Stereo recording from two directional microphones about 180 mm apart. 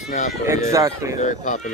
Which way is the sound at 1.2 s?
45° left (ahead or behind).